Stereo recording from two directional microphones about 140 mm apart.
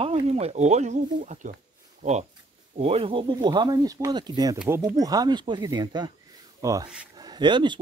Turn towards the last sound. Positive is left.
turn(degrees=-35)  # may be behind; listen again after turning